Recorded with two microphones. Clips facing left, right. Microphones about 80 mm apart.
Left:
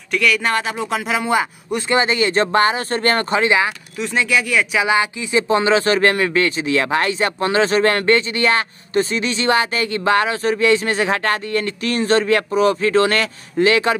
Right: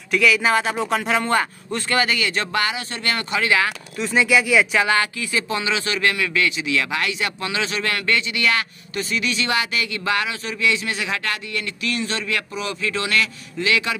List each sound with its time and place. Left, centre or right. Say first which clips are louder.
0.1 s speech: even; centre; by 3.4 s left
3.4 s speech: left 1 dB; left
4.0 s speech: right 1 dB; centre
4.7 s speech: left 2 dB; centre
5.6 s speech: left 8 dB; left